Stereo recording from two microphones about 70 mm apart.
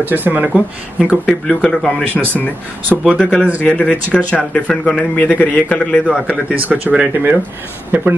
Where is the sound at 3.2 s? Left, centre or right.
Centre.